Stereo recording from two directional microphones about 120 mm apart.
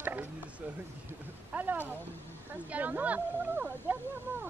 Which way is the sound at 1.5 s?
15° right (ahead or behind).